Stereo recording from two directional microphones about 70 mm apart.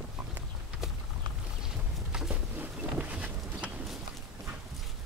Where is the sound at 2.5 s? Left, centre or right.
Right.